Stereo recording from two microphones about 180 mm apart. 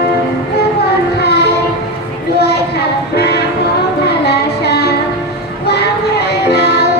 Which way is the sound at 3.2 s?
65° left (ahead or behind).